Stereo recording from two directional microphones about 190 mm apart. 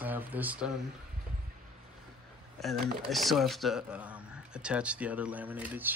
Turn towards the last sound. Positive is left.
turn(degrees=-10)  # may be behind; listen again after turning